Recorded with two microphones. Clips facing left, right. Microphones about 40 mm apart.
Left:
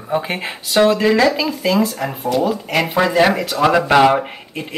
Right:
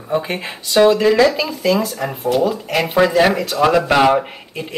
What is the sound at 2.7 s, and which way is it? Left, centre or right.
Speech, centre.